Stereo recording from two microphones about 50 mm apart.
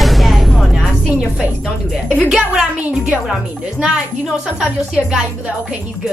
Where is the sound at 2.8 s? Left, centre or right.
Right.